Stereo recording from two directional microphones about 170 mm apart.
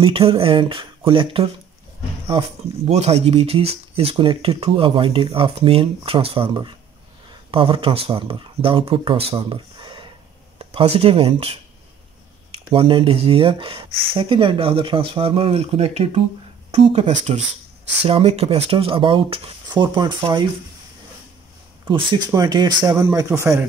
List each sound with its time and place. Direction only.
0.0 s speech: 35° right (ahead or behind)
2.9 s speech: 40° right (ahead or behind)
21.8 s a man's voice: 25° right (ahead or behind)